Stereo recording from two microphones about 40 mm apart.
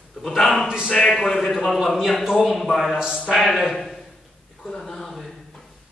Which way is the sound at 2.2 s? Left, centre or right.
Centre.